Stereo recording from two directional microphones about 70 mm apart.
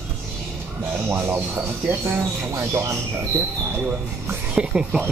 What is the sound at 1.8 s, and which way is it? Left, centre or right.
Speech, right.